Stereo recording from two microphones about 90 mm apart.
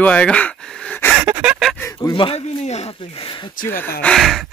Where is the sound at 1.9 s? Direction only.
40° left (ahead or behind).